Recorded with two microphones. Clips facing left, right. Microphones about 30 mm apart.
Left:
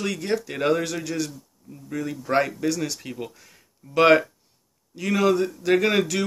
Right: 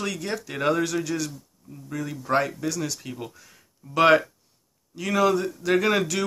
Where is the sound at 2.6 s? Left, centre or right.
Left.